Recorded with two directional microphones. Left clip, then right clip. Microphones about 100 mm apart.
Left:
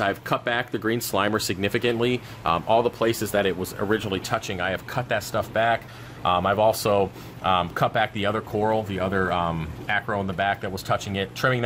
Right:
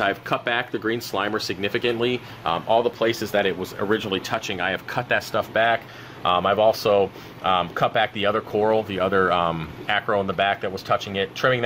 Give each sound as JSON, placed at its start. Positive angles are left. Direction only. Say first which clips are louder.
{"t": 0.0, "sound": "speech", "louder": "right 1 dB", "side_deg": 35}
{"t": 0.8, "sound": "speech", "louder": "left 1 dB", "side_deg": 70}
{"t": 3.1, "sound": "speech", "louder": "right 1 dB", "side_deg": 40}
{"t": 8.5, "sound": "speech", "louder": "right 3 dB", "side_deg": 5}
{"t": 10.7, "sound": "speech", "louder": "right 3 dB", "side_deg": 30}